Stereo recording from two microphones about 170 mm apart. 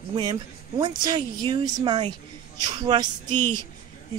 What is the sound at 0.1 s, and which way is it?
A woman's voice, 30° right (ahead or behind).